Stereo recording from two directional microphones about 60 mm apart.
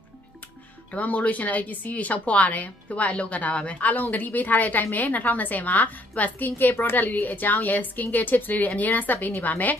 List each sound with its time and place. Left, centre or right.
0.9 s a woman's voice: left